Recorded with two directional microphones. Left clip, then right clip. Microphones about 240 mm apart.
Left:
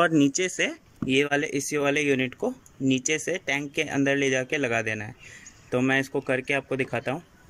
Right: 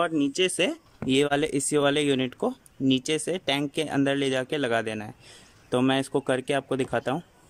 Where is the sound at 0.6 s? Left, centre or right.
Centre.